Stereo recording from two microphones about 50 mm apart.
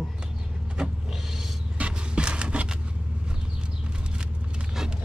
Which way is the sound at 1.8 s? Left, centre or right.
Right.